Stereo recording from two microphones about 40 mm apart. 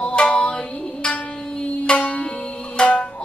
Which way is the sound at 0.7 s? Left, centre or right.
Left.